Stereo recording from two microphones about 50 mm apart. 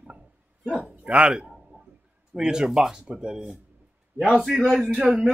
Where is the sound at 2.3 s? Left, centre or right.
Centre.